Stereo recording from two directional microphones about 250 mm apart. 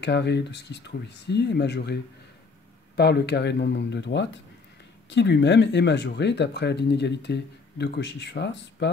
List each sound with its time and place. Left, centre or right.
0.0 s speech: left
3.0 s speech: left